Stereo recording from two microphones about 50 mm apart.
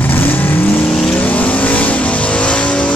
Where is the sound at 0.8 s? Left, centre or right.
Centre.